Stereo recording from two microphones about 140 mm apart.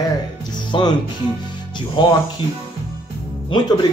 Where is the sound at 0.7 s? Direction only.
30° left (ahead or behind).